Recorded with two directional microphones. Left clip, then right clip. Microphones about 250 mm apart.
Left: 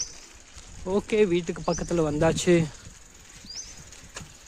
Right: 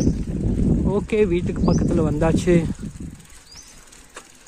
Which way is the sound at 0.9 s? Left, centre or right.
Centre.